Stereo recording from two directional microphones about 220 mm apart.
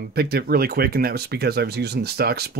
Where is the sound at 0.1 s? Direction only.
45° right (ahead or behind).